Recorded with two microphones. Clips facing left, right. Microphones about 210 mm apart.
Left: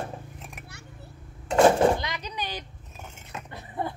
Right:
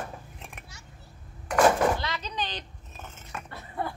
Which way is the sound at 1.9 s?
15° left (ahead or behind).